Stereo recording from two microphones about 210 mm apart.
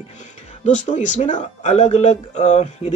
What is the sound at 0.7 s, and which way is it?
Speech, 35° left (ahead or behind).